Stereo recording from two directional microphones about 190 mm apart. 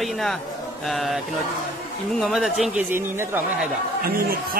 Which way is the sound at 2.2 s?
Centre (ahead or behind).